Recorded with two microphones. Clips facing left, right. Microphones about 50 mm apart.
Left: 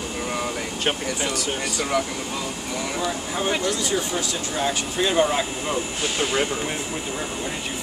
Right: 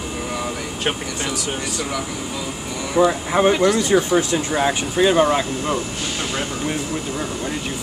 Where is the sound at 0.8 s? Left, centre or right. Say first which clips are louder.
Right 1 dB; centre.